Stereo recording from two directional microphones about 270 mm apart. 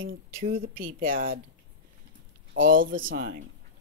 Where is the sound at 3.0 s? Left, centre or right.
Right.